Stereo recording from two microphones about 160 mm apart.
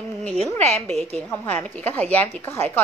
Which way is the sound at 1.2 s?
10° left (ahead or behind).